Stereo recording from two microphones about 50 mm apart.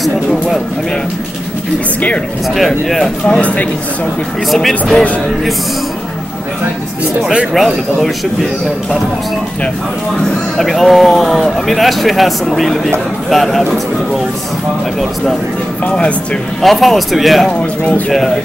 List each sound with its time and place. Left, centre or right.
0.0 s speech: centre
2.5 s speech: centre
3.3 s a man's voice: left
4.5 s speech: centre
7.5 s speech: centre
10.6 s speech: centre
16.6 s speech: centre
17.5 s a man's voice: left